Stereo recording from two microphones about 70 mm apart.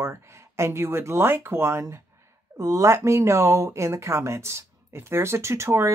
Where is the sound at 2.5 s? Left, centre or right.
Right.